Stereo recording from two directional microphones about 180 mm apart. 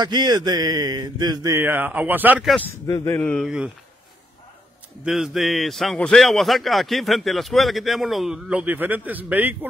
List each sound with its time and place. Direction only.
0.0 s speech: 25° right (ahead or behind)
2.5 s a man's voice: 10° left (ahead or behind)
3.4 s a man's voice: 5° right (ahead or behind)
5.0 s a man's voice: centre (ahead or behind)